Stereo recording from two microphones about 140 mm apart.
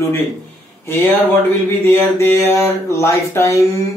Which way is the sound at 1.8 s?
15° left (ahead or behind).